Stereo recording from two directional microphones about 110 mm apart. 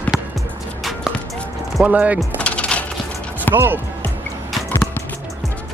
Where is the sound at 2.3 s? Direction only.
10° left (ahead or behind).